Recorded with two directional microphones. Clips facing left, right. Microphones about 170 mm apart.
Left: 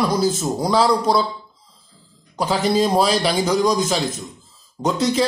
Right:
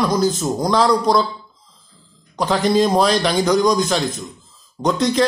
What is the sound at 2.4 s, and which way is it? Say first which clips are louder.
A man's voice: right 2 dB; 5° left (ahead or behind).